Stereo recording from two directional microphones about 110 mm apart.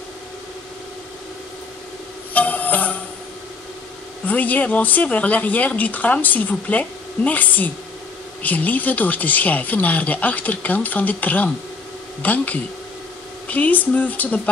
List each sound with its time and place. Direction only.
2.3 s music: 15° left (ahead or behind)
4.3 s speech: 15° left (ahead or behind)